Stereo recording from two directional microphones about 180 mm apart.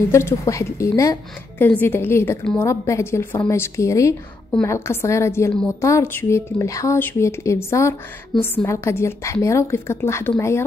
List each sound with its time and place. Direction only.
0.1 s a woman's voice: 15° left (ahead or behind)